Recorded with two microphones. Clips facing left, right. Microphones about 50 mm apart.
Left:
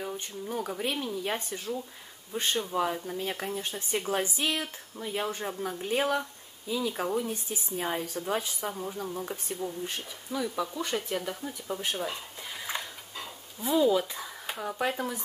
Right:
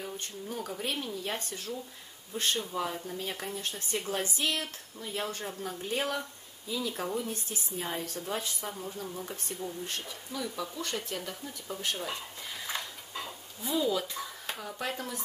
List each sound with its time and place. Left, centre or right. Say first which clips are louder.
0.0 s speech: left 3 dB; centre
8.8 s speech: left 4 dB; centre
12.5 s a sound: left 2 dB; centre
13.6 s speech: left 6 dB; centre